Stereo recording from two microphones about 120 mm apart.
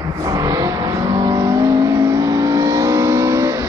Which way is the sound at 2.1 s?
30° right (ahead or behind).